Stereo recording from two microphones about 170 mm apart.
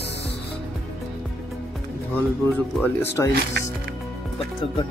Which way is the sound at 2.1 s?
10° left (ahead or behind).